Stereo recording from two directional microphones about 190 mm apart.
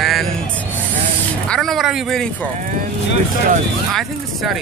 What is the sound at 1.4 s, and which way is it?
Speech, 5° left (ahead or behind).